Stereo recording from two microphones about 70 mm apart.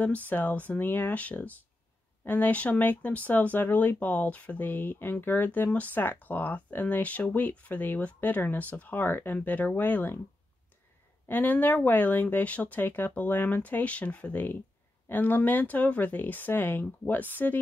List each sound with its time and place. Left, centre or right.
0.0 s speech: left
11.2 s speech: left